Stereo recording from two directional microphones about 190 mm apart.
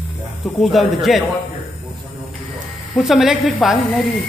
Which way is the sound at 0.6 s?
Centre (ahead or behind).